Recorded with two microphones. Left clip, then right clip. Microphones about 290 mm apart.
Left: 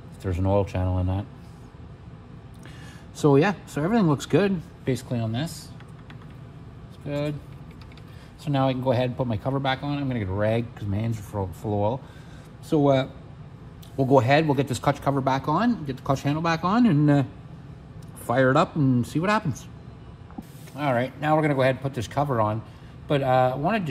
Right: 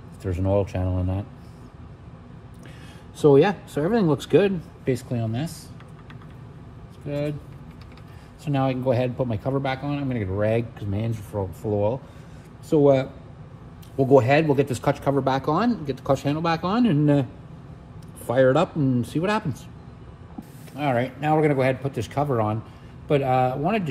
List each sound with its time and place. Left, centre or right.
0.2 s a man's voice: left
3.2 s a man's voice: left
7.1 s a man's voice: left
8.5 s a man's voice: left
20.7 s a man's voice: left